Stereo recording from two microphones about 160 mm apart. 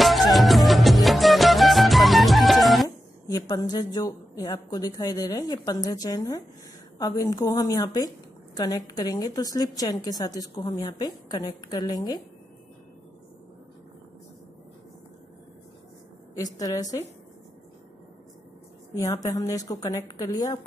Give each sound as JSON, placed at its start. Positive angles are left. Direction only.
{"t": 0.0, "sound": "music", "side_deg": 0}
{"t": 3.3, "sound": "a woman's voice", "side_deg": 25}
{"t": 16.5, "sound": "a woman's voice", "side_deg": 20}
{"t": 19.2, "sound": "a woman's voice", "side_deg": 20}